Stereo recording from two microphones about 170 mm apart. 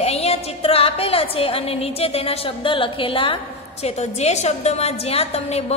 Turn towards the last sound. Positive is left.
turn(degrees=35)  # may be behind; listen again after turning